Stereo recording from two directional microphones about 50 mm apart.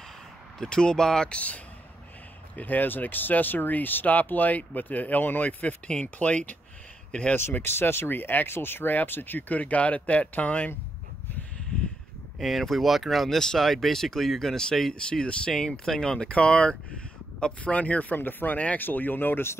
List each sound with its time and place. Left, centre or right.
0.6 s speech: centre
1.3 s speech: left
7.6 s speech: left
12.4 s speech: centre; by 19.5 s left